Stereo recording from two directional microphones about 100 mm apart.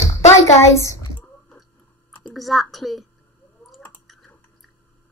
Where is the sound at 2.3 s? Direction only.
Centre (ahead or behind).